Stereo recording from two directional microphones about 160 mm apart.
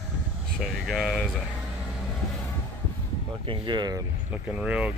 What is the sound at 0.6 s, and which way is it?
Speech, centre (ahead or behind).